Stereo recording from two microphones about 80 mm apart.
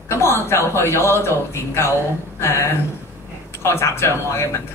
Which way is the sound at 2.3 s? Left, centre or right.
Left.